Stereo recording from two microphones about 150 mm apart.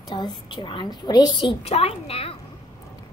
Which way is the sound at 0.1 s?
30° left (ahead or behind).